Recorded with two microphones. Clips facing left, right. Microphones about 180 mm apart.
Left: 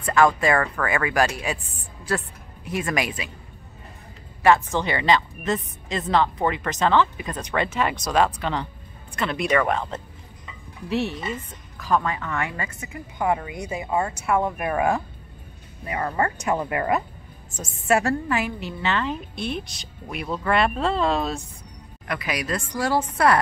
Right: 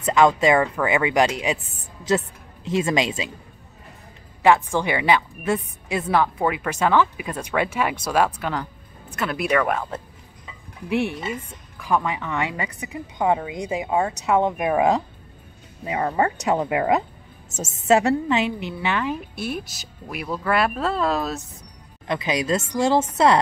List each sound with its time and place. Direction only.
0.0 s a woman's voice: 20° right (ahead or behind)
4.4 s a woman's voice: 15° right (ahead or behind)
22.0 s speech: 25° right (ahead or behind)